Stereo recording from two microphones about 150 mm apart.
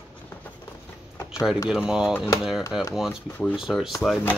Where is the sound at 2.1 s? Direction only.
20° left (ahead or behind).